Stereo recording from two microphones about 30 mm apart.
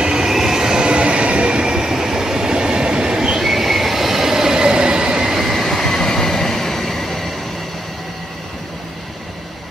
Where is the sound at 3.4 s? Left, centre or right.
Centre; by 5.3 s right.